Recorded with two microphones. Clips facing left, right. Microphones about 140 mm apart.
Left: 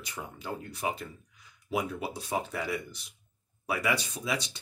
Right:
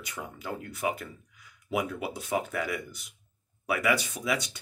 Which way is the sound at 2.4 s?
25° left (ahead or behind).